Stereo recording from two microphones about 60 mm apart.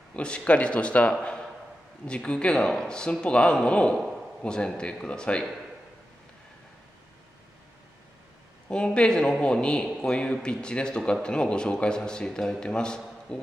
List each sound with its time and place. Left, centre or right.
0.1 s a man's voice: centre
8.6 s a man's voice: centre